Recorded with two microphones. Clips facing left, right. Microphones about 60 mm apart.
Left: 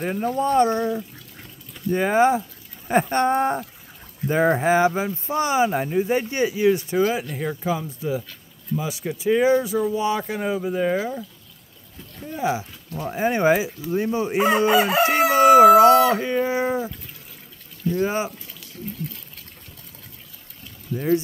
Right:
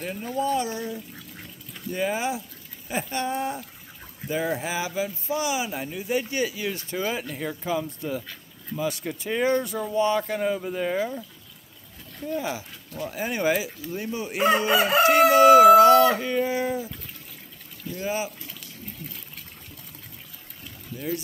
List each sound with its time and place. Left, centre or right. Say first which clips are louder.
0.4 s speech: left 6 dB; left
6.3 s howl: left 8 dB; left
7.0 s speech: left 7 dB; centre
7.8 s speech: left 4 dB; centre
12.4 s howl: left 9 dB; centre
14.7 s crowing: left 2 dB; centre
15.0 s howl: right 2 dB; left
17.9 s speech: left 5 dB; left
19.0 s crowing: left 9 dB; centre